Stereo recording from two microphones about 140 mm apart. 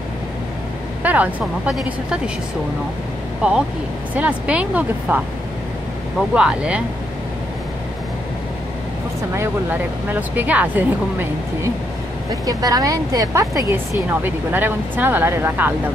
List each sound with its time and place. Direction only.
1.0 s speech: 10° right (ahead or behind)
3.4 s speech: 5° right (ahead or behind)
9.3 s a woman's voice: 20° right (ahead or behind)
12.4 s a woman's voice: 25° right (ahead or behind)